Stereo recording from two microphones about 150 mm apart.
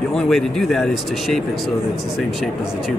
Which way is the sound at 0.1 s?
Centre (ahead or behind).